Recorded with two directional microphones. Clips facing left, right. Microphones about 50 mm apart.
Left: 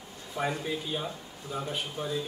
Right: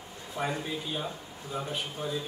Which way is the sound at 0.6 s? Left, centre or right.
Centre.